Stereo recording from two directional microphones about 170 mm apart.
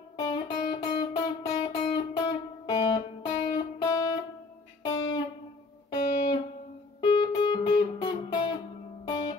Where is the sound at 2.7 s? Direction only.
30° left (ahead or behind).